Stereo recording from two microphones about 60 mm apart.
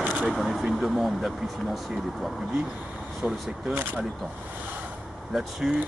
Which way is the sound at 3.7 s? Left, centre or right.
Right.